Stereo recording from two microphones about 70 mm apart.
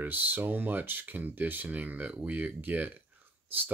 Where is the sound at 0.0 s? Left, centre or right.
Right.